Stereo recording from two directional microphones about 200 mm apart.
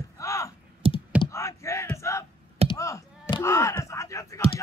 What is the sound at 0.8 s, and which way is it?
Computer keyboard, 30° right (ahead or behind).